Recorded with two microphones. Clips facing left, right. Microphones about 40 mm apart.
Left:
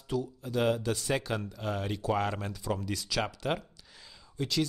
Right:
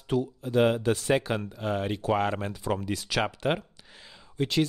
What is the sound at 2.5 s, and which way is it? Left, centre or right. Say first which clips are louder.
Speech: right 4 dB; right.